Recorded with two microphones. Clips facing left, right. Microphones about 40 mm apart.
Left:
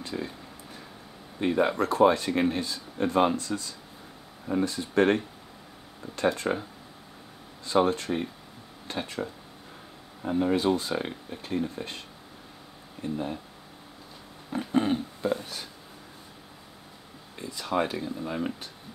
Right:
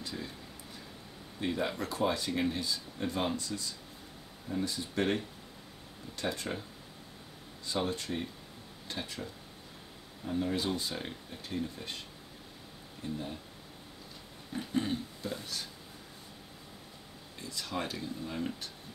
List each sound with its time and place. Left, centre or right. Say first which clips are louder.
0.0 s speech: left 7 dB; left
1.4 s speech: left 9 dB; left
4.5 s speech: left 7 dB; left
6.1 s speech: left 10 dB; left
7.6 s speech: left 10 dB; left
13.0 s speech: left 7 dB; left
14.5 s a sound: left 8 dB; left
15.2 s a sound: left 9 dB; left
17.4 s speech: left 9 dB; left